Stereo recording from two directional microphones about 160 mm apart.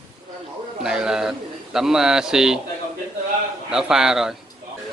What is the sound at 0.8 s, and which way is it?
A man's voice, 5° right (ahead or behind).